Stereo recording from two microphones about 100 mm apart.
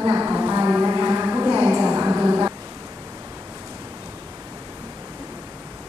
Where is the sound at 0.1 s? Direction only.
20° right (ahead or behind).